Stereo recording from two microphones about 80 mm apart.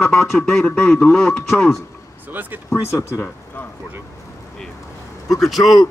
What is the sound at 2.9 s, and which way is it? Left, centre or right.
Speech, left.